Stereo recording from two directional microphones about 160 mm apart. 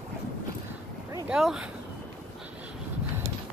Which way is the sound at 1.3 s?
5° right (ahead or behind).